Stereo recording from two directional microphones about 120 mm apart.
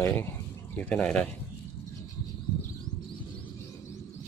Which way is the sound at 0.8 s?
10° left (ahead or behind).